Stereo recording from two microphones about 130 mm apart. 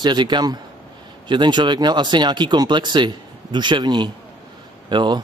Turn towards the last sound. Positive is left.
turn(degrees=-35)  # may be behind; listen again after turning